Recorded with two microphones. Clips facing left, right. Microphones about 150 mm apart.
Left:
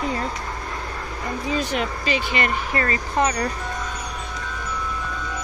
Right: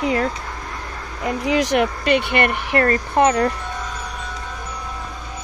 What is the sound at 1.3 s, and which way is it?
Speech, 90° right.